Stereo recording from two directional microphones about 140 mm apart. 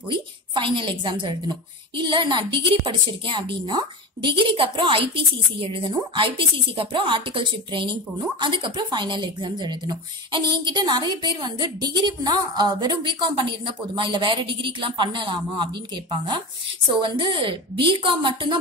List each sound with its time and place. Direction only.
0.1 s a woman's voice: 35° right (ahead or behind)